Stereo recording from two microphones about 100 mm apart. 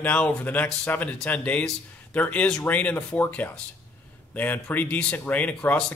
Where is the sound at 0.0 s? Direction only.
15° left (ahead or behind).